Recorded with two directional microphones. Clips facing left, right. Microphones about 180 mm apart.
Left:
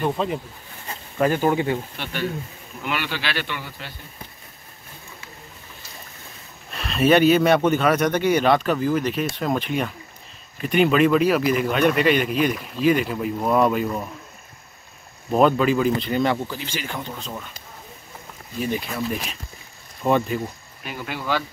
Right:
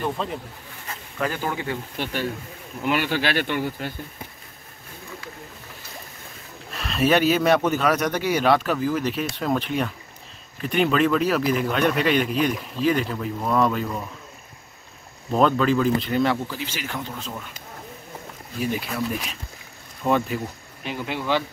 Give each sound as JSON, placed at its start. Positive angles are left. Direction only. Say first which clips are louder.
{"t": 0.0, "sound": "speech", "louder": "left 4 dB", "side_deg": 5}
{"t": 1.4, "sound": "speech", "louder": "left 7 dB", "side_deg": 20}
{"t": 2.0, "sound": "speech", "louder": "even", "side_deg": -40}
{"t": 6.7, "sound": "speech", "louder": "left 3 dB", "side_deg": 0}
{"t": 15.3, "sound": "speech", "louder": "left 2 dB", "side_deg": 10}
{"t": 16.0, "sound": "speech", "louder": "even", "side_deg": 0}
{"t": 18.6, "sound": "speech", "louder": "even", "side_deg": -5}
{"t": 20.8, "sound": "speech", "louder": "right 2 dB", "side_deg": -20}